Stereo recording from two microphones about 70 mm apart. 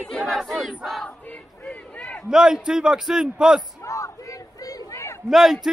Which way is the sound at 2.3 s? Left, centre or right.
Centre.